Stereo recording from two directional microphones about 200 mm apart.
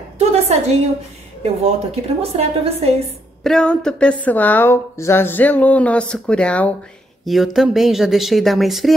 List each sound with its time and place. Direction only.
0.2 s a sound: 30° right (ahead or behind)
1.4 s a woman's voice: 30° right (ahead or behind)
3.4 s speech: 5° left (ahead or behind)